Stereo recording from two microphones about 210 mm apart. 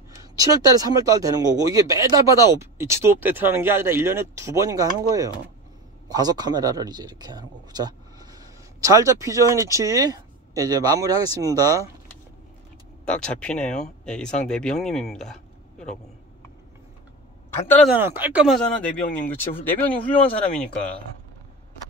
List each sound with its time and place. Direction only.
0.4 s a man's voice: 15° right (ahead or behind)
13.0 s speech: 5° left (ahead or behind)
17.8 s speech: 10° right (ahead or behind); by 20.3 s 5° left (ahead or behind)